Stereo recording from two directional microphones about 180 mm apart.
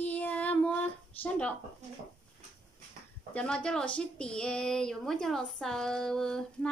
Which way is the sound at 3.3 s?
5° left (ahead or behind).